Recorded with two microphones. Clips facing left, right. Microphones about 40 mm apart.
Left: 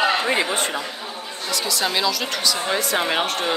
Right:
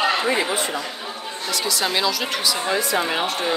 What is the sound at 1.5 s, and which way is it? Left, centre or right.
Speech, centre.